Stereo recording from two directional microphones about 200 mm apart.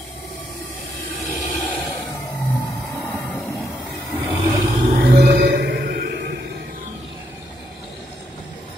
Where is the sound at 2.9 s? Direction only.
5° left (ahead or behind).